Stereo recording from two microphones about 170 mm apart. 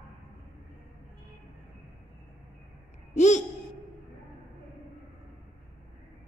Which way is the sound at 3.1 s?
45° left (ahead or behind).